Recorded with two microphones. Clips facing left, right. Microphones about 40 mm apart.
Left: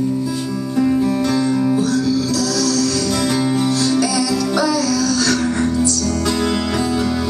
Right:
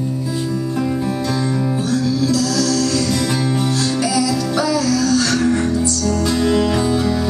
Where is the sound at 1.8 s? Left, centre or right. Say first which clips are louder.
Left 1 dB; right.